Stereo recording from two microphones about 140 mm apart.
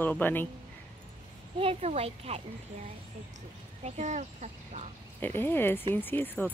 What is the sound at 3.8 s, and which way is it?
Speech, 60° right (ahead or behind).